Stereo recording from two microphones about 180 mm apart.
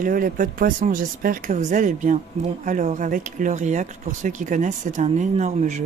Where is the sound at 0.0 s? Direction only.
50° right (ahead or behind).